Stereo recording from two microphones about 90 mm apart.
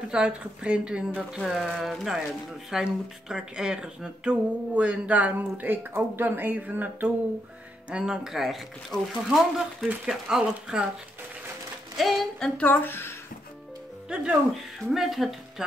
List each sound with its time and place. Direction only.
0.1 s speech: 10° right (ahead or behind)
1.4 s speech: centre (ahead or behind); by 7.1 s 20° right (ahead or behind)
7.9 s speech: 5° right (ahead or behind)
12.0 s speech: centre (ahead or behind)
12.5 s a woman's voice: 20° left (ahead or behind)
14.0 s speech: 10° right (ahead or behind)